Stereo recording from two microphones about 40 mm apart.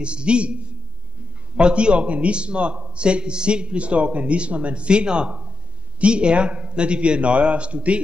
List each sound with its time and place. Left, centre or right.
0.0 s a man's voice: right
1.6 s a man's voice: right